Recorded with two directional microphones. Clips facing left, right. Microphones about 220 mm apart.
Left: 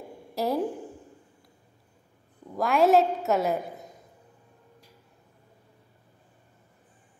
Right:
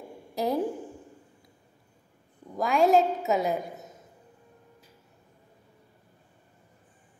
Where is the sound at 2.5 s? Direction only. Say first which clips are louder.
Left 1 dB; centre (ahead or behind).